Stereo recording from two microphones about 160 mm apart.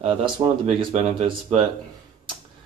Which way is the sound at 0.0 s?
30° right (ahead or behind).